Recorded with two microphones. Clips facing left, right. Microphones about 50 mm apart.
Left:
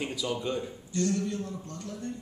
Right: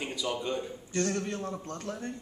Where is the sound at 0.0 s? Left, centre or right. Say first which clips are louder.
Left 1 dB; centre.